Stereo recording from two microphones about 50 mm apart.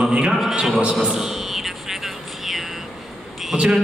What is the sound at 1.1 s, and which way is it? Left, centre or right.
Music, centre.